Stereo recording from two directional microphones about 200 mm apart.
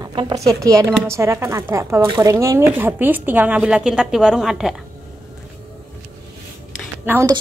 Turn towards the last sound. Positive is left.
turn(degrees=-15)  # may be behind; listen again after turning